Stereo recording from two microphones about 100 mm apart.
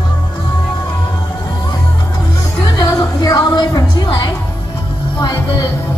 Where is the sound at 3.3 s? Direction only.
45° left (ahead or behind).